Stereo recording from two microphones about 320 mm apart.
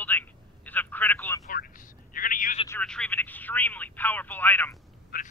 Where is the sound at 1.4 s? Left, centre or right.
Left.